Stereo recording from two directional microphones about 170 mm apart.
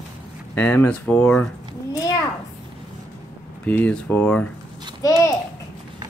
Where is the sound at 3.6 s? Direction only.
10° left (ahead or behind).